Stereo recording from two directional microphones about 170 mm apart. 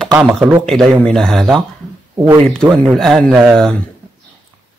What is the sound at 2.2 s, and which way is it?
Speech, 15° right (ahead or behind).